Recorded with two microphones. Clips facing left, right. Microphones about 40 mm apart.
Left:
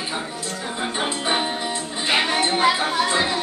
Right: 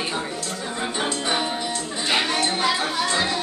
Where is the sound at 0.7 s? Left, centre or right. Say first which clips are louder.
Left 1 dB; centre.